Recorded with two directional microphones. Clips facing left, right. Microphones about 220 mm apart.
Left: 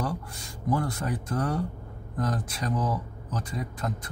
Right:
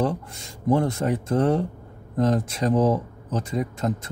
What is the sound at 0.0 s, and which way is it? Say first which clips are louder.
Speech: right 7 dB; 25° right (ahead or behind).